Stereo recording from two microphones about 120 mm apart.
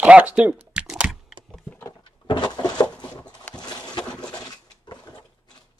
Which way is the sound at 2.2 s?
35° left (ahead or behind).